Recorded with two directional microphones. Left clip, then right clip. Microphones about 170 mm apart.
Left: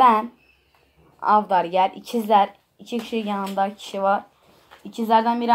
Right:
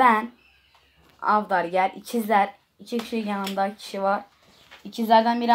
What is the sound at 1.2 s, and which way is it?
A woman's voice, 30° right (ahead or behind).